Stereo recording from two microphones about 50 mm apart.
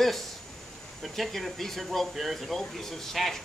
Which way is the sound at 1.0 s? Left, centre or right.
Centre.